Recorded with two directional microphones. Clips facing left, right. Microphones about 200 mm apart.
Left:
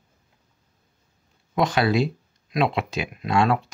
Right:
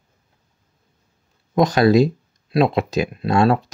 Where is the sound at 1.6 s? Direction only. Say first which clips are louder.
Right 7 dB; 40° right (ahead or behind).